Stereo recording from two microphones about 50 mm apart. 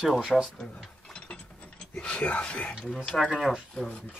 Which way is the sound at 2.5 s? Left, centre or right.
Left.